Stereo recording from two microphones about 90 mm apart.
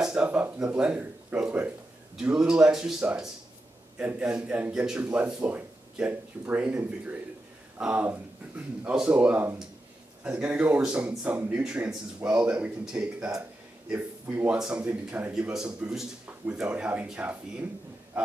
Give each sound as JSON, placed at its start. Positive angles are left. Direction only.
{"t": 0.0, "sound": "speech", "side_deg": -10}
{"t": 18.1, "sound": "wild animals", "side_deg": -10}